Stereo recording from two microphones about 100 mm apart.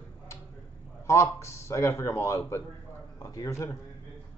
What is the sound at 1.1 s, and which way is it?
A man's voice, 30° left (ahead or behind).